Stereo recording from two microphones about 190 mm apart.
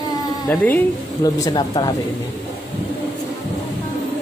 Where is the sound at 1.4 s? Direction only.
20° left (ahead or behind).